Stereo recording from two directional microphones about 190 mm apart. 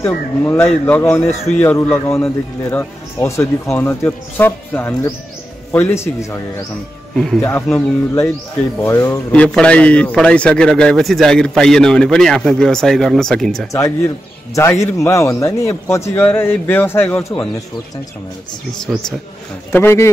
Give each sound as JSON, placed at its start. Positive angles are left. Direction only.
{"t": 0.0, "sound": "a man's voice", "side_deg": 10}
{"t": 7.2, "sound": "speech", "side_deg": 5}
{"t": 7.5, "sound": "a man's voice", "side_deg": 15}
{"t": 13.7, "sound": "a man's voice", "side_deg": 15}
{"t": 18.9, "sound": "speech", "side_deg": 0}
{"t": 19.7, "sound": "a man's voice", "side_deg": 10}